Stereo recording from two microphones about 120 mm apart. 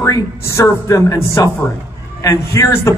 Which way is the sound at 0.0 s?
25° left (ahead or behind).